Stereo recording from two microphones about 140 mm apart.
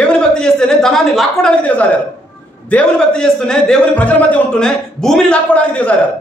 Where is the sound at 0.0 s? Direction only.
5° left (ahead or behind).